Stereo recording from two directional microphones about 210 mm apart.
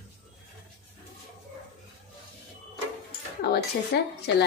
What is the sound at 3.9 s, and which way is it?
Speech, 50° left (ahead or behind).